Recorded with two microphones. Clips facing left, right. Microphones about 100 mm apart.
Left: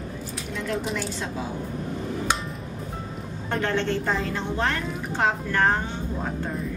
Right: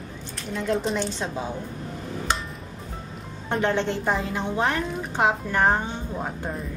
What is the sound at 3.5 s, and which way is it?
A woman's voice, 15° right (ahead or behind).